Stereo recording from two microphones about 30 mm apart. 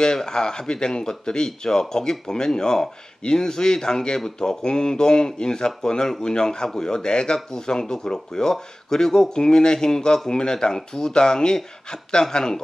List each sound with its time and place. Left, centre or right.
0.0 s speech: left